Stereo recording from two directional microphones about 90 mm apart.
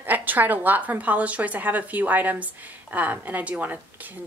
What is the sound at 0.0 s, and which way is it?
A woman's voice, 20° right (ahead or behind).